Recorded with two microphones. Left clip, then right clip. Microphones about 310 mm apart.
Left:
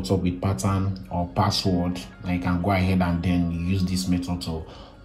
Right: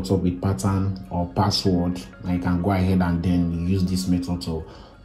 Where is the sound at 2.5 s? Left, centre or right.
Centre.